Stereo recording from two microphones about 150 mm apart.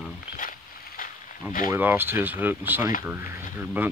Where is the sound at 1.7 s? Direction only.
15° right (ahead or behind).